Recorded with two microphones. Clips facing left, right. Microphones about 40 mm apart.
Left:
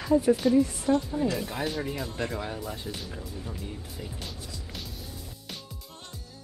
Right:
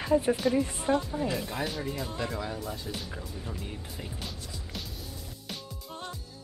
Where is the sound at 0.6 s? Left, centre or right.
Right.